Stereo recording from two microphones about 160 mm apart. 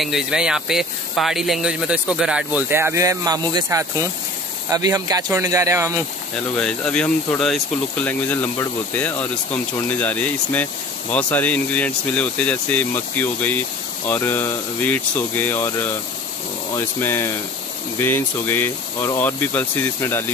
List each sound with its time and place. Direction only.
0.0 s speech: 5° right (ahead or behind); by 5.9 s 20° right (ahead or behind)
6.5 s speech: 5° left (ahead or behind)